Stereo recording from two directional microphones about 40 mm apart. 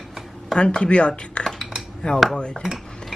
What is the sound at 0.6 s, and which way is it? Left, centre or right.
Speech, left.